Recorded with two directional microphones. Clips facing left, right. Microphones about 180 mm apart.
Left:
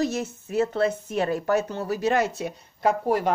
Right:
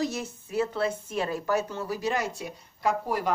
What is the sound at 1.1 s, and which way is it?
Speech, 60° left (ahead or behind).